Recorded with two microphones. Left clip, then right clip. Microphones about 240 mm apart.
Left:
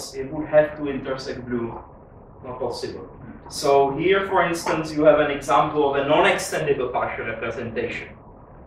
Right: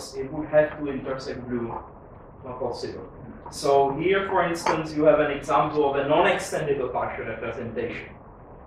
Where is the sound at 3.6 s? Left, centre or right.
Centre.